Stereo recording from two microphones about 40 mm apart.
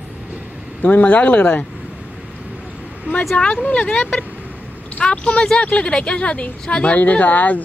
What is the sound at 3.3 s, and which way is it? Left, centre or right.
Speech, left.